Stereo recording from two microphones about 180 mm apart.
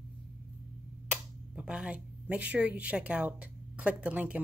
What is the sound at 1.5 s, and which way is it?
A woman's voice, 5° right (ahead or behind).